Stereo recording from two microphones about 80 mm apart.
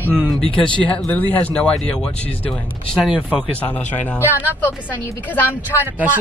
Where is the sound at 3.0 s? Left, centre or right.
Centre.